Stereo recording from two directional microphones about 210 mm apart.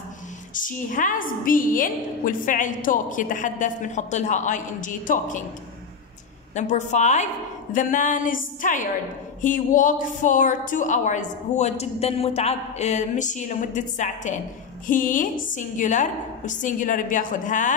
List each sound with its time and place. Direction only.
0.6 s a woman's voice: 40° left (ahead or behind)
6.5 s a woman's voice: 35° left (ahead or behind)